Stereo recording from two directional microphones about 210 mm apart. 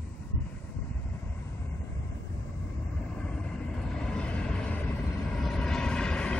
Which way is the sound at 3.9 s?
5° left (ahead or behind).